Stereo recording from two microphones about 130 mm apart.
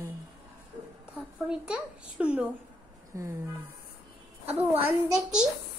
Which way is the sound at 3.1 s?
25° right (ahead or behind).